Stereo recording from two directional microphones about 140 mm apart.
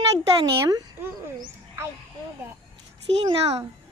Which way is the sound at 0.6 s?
20° right (ahead or behind).